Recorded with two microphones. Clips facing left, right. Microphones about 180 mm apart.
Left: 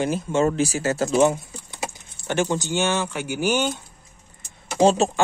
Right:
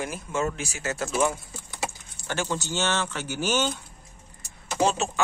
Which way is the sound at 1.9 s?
20° left (ahead or behind).